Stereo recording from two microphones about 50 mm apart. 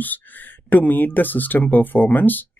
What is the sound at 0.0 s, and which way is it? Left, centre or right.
Speech, left.